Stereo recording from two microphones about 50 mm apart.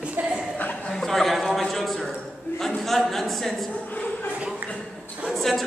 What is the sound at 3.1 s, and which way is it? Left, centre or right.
Speech, centre.